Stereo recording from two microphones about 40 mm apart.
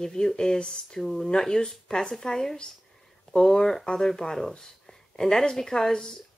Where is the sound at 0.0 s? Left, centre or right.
Centre.